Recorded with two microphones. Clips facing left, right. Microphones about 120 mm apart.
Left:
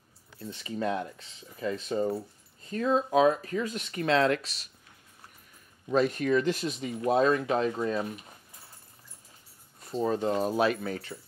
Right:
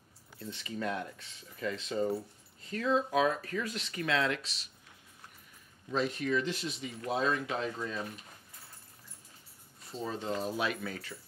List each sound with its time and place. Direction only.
0.7 s speech: 30° left (ahead or behind)
1.8 s speech: 45° left (ahead or behind); by 3.7 s 25° left (ahead or behind)
3.7 s speech: 40° left (ahead or behind)
5.9 s speech: 50° left (ahead or behind)
9.8 s speech: 50° left (ahead or behind)